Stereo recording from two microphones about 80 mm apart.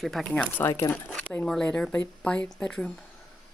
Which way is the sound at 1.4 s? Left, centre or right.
Centre.